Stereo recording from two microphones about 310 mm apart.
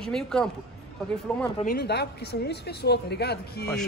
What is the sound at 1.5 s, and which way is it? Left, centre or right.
Speech, left.